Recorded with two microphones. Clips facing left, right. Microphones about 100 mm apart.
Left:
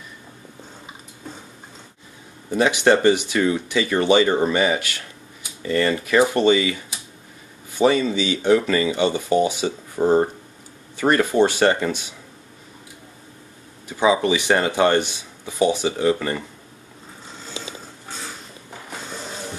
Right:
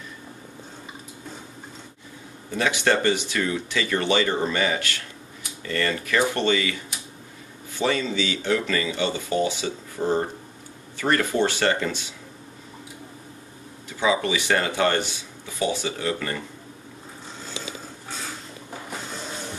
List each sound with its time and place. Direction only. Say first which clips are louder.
2.5 s speech: left 5 dB; 20° left (ahead or behind)
7.7 s speech: left 6 dB; 15° left (ahead or behind)
10.0 s speech: left 6 dB; 35° left (ahead or behind)
11.0 s speech: left 5 dB; 20° left (ahead or behind)
13.8 s speech: left 5 dB; 20° left (ahead or behind)